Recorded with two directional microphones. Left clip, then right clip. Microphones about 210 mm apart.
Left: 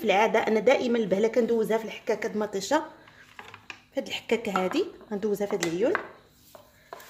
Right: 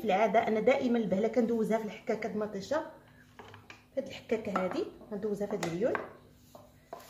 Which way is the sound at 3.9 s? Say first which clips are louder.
Left 6 dB; 40° left (ahead or behind).